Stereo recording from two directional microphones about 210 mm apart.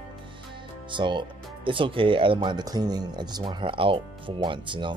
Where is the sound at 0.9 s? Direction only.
20° right (ahead or behind).